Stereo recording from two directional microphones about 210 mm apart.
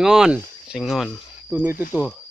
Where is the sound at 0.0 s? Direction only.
Centre (ahead or behind).